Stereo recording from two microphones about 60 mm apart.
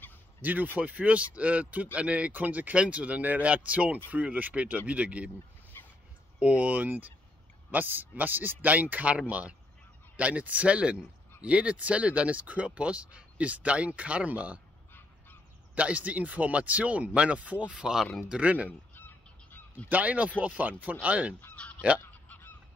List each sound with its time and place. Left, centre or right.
0.4 s speech: right
5.7 s a sound: left
6.4 s speech: right
15.7 s speech: right
18.7 s fowl: left
19.9 s speech: right
21.5 s goose: left